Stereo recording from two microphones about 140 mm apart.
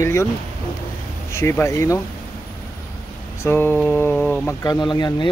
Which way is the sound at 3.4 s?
15° left (ahead or behind).